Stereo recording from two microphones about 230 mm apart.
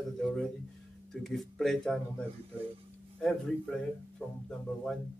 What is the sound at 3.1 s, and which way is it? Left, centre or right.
Speech, centre.